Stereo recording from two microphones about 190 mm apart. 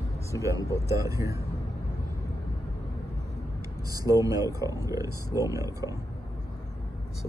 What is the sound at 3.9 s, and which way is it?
Speech, 20° right (ahead or behind).